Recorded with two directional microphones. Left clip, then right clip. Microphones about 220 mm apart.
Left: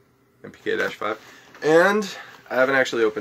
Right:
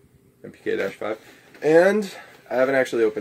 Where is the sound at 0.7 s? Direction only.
5° right (ahead or behind).